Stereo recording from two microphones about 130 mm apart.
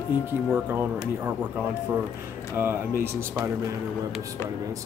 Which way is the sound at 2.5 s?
15° right (ahead or behind).